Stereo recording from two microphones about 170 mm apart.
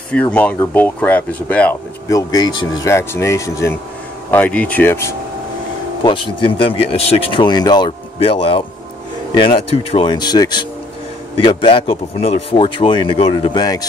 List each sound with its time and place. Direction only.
0.1 s speech: 10° left (ahead or behind)
6.0 s a man's voice: 30° left (ahead or behind)